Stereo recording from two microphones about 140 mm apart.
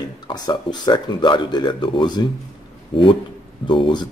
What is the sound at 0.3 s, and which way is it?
Speech, 30° left (ahead or behind).